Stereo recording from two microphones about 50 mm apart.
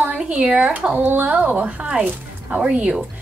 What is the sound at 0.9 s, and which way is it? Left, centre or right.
A woman's voice, right.